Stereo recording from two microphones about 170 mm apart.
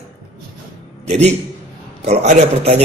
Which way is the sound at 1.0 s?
40° right (ahead or behind).